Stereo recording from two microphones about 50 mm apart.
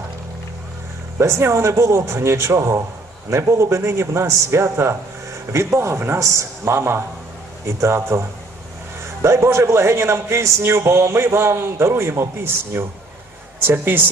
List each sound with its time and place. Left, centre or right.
1.1 s a man's voice: right
5.5 s speech: right
6.1 s speech: right
7.6 s a man's voice: right